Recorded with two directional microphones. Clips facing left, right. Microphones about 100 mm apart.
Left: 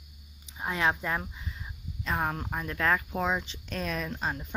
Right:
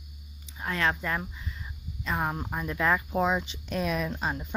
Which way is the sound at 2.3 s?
10° right (ahead or behind).